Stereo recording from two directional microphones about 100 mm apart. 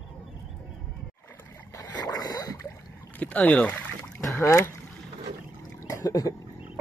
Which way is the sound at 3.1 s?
15° left (ahead or behind).